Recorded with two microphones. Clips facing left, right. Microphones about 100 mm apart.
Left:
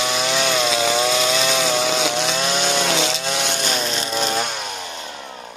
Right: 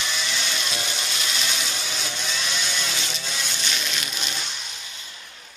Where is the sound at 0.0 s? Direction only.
65° left (ahead or behind); by 2.3 s 85° left.